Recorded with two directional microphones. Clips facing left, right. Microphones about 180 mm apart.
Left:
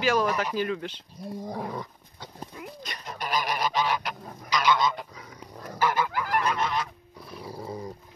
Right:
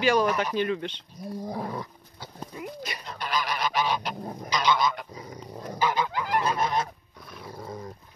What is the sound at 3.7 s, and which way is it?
Speech, 20° right (ahead or behind).